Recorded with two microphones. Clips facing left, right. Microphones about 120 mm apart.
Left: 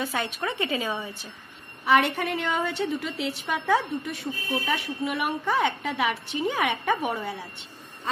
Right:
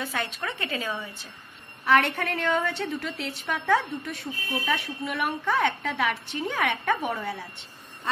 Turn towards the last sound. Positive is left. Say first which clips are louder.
# left 1 dB
turn(degrees=10)  # may be behind; listen again after turning